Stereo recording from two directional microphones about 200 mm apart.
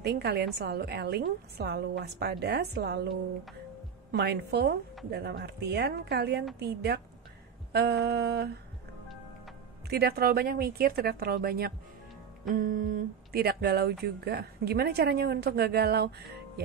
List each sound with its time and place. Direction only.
0.0 s a woman's voice: 55° right (ahead or behind)
9.8 s speech: 50° right (ahead or behind)